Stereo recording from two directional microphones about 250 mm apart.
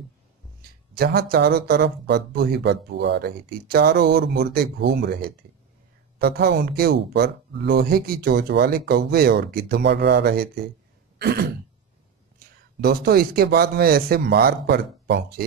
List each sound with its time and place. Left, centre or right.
0.6 s speech: right
11.1 s throat clearing: right
12.4 s speech: right